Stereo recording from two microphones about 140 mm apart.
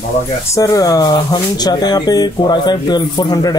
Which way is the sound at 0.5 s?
25° left (ahead or behind).